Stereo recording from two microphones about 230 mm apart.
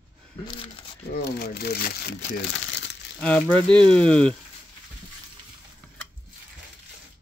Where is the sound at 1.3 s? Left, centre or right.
Left.